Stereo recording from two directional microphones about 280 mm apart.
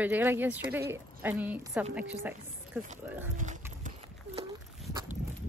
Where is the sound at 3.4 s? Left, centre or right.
Right.